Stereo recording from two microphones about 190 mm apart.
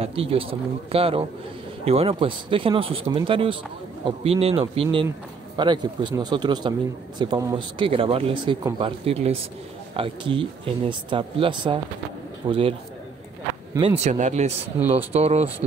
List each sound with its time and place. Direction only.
0.0 s speech: 30° right (ahead or behind)
13.7 s speech: 30° right (ahead or behind)